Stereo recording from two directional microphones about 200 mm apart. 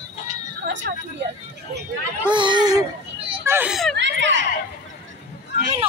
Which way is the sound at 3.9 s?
65° right (ahead or behind).